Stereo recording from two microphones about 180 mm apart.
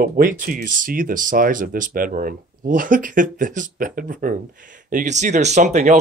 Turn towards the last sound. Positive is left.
turn(degrees=-40)  # may be behind; listen again after turning